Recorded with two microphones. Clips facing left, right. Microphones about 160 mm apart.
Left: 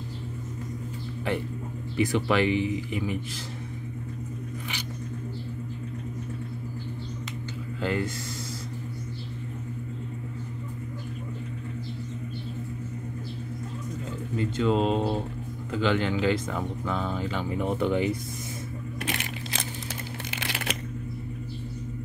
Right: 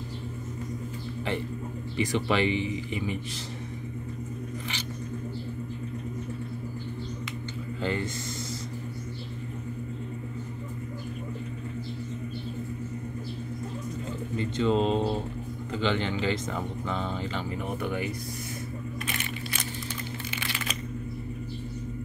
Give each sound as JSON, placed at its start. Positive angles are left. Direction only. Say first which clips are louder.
{"t": 2.0, "sound": "speech", "louder": "left 2 dB", "side_deg": 5}
{"t": 7.8, "sound": "speech", "louder": "left 2 dB", "side_deg": 5}
{"t": 14.3, "sound": "speech", "louder": "left 1 dB", "side_deg": 5}
{"t": 17.6, "sound": "speech", "louder": "left 8 dB", "side_deg": 25}
{"t": 19.0, "sound": "crushing", "louder": "left 1 dB", "side_deg": 80}
{"t": 20.2, "sound": "crumpling", "louder": "left 2 dB", "side_deg": 75}